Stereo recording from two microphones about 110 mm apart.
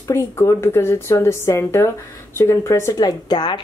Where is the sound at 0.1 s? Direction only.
30° left (ahead or behind).